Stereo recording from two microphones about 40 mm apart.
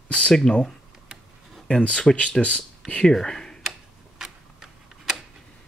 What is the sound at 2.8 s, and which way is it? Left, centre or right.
Speech, centre.